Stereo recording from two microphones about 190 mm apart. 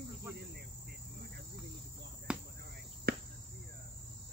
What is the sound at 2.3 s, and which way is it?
Cricket, 5° right (ahead or behind).